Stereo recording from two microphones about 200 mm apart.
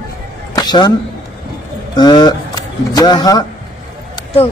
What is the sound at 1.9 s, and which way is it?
Speech, 20° left (ahead or behind).